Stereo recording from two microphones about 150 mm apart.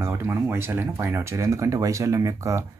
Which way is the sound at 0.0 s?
15° right (ahead or behind).